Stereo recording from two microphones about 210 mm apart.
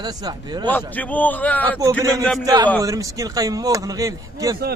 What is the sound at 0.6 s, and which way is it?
A man's voice, 10° left (ahead or behind).